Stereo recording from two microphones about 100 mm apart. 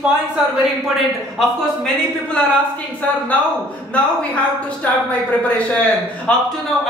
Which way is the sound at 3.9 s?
15° left (ahead or behind).